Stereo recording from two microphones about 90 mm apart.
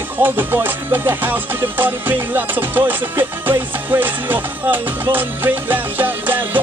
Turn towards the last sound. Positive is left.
turn(degrees=-20)  # may be behind; listen again after turning